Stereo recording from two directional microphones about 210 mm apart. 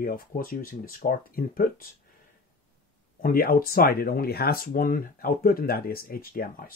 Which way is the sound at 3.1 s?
45° left (ahead or behind).